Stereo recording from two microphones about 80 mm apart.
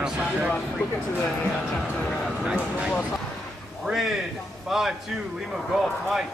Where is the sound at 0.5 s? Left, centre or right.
Centre.